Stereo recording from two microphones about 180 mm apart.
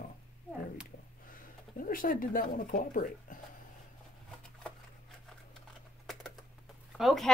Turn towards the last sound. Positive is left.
turn(degrees=0)  # may be behind; listen again after turning